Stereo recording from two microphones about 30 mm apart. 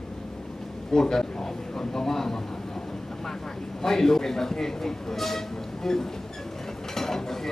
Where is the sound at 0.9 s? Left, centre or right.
Centre.